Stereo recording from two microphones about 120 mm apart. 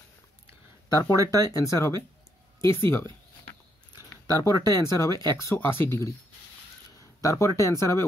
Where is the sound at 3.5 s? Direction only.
30° left (ahead or behind).